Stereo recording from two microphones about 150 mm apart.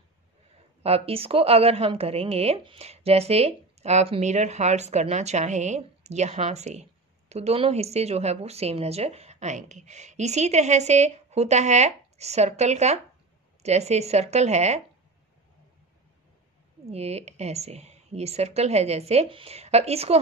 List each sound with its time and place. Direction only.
0.8 s a woman's voice: 40° right (ahead or behind)
16.8 s a woman's voice: 45° right (ahead or behind)